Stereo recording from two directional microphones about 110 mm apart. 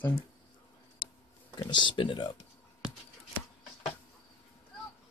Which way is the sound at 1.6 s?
45° left (ahead or behind).